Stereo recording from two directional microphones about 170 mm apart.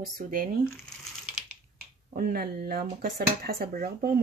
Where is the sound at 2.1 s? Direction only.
65° right (ahead or behind).